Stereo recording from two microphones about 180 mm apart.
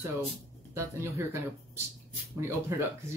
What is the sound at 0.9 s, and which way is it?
Speech, 15° right (ahead or behind).